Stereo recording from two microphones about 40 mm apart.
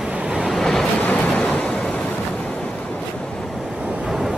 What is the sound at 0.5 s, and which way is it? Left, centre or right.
Vehicle, centre.